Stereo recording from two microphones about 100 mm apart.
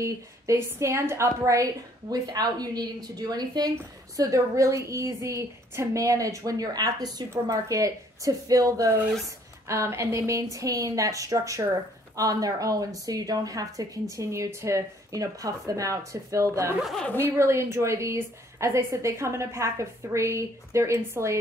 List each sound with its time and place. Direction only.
0.0 s a woman's voice: 30° right (ahead or behind)
4.2 s a woman's voice: 30° right (ahead or behind)
16.8 s speech: 5° left (ahead or behind)
17.4 s a woman's voice: 30° right (ahead or behind)